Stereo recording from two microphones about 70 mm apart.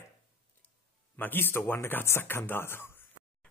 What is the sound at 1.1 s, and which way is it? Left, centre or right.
A man's voice, left.